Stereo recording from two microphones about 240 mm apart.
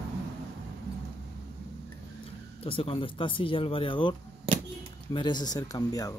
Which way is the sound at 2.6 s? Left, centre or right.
Left.